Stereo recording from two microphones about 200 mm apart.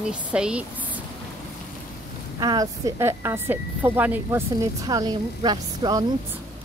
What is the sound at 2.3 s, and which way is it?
A woman's voice, 20° right (ahead or behind).